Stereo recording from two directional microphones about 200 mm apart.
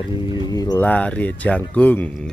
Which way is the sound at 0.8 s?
5° left (ahead or behind).